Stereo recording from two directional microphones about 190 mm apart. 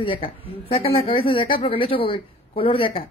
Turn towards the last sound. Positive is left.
turn(degrees=30)  # may be behind; listen again after turning